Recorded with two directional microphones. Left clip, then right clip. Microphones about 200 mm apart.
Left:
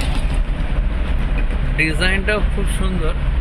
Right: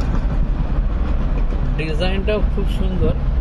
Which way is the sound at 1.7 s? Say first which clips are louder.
Left 6 dB; 5° right (ahead or behind).